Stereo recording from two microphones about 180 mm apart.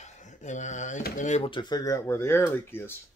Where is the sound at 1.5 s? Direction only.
25° left (ahead or behind).